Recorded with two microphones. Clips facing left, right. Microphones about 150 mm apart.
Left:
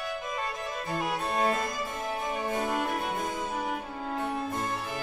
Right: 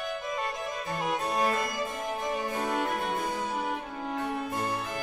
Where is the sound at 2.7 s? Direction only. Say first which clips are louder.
Right 1 dB; centre (ahead or behind).